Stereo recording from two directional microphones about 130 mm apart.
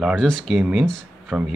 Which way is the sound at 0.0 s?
5° left (ahead or behind).